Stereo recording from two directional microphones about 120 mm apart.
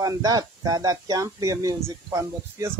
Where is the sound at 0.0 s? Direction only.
30° right (ahead or behind).